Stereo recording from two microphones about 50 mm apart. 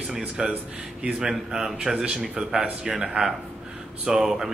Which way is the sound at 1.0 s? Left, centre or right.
Centre.